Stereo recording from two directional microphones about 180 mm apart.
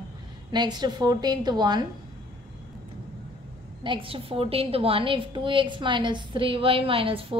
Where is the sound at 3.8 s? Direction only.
30° right (ahead or behind).